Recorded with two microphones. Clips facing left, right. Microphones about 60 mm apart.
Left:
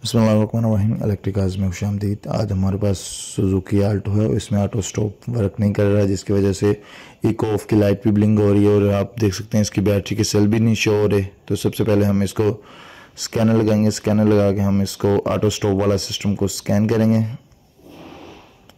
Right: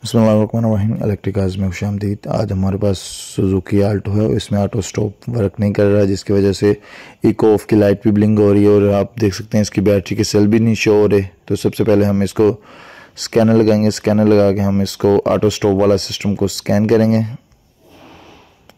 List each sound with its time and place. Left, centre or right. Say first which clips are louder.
0.1 s speech: right 4 dB; right
8.7 s speech: right 5 dB; right
13.2 s speech: right 5 dB; right